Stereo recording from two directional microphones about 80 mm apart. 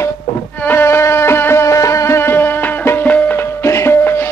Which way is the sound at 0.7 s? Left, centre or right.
Left.